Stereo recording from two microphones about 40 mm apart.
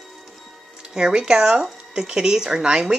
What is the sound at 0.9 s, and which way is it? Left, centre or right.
Speech, right.